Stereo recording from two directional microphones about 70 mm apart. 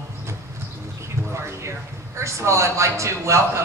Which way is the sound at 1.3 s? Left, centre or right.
Right.